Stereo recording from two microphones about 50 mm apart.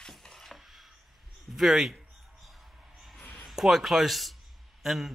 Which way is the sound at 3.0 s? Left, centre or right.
Centre.